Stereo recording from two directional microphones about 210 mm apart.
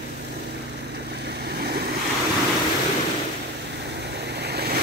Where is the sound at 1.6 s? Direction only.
50° right (ahead or behind).